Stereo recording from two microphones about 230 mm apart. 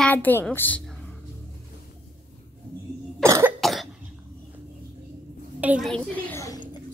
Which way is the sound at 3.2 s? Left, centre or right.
Centre.